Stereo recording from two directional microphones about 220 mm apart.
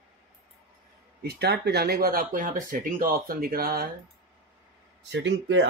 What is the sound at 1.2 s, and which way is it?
Speech, 50° right (ahead or behind).